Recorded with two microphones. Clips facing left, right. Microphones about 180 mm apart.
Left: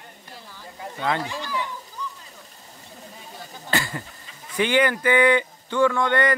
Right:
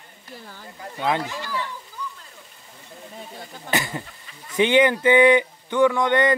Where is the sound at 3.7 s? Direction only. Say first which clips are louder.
Right 1 dB; 20° right (ahead or behind).